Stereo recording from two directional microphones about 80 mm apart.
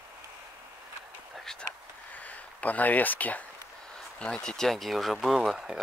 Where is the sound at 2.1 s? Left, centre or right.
Centre.